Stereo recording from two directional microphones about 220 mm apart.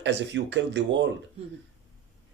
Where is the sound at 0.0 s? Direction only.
55° right (ahead or behind).